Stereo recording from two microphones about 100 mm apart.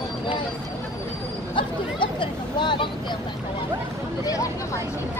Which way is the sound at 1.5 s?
55° left (ahead or behind).